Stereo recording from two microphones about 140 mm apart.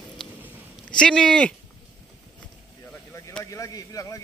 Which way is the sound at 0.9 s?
5° left (ahead or behind).